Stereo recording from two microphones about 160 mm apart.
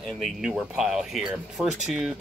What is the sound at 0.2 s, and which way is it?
Speech, 5° right (ahead or behind).